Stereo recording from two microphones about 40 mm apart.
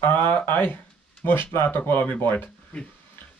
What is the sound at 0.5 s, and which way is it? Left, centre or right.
Speech, left.